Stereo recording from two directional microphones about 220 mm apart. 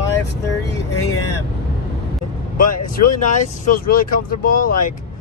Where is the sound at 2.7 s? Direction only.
35° left (ahead or behind).